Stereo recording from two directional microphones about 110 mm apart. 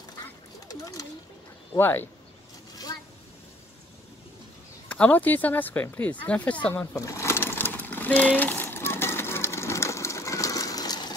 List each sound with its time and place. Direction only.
0.7 s speech: 35° left (ahead or behind)
1.8 s speech: 20° left (ahead or behind)
4.8 s speech: 15° left (ahead or behind)
7.0 s sewing machine: 25° left (ahead or behind)